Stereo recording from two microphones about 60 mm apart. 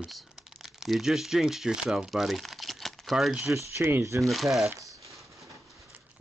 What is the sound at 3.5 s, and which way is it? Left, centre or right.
Speech, right.